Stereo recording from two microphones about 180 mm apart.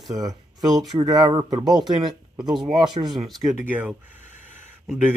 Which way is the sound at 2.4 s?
5° right (ahead or behind).